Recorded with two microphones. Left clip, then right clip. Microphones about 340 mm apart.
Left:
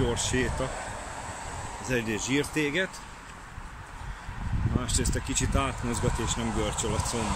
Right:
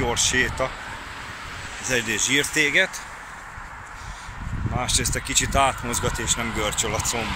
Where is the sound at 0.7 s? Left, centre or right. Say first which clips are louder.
Right 2 dB; left.